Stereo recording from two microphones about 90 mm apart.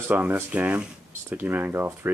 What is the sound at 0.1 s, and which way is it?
Speech, 15° right (ahead or behind).